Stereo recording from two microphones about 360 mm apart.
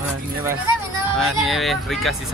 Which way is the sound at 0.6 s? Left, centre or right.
Right.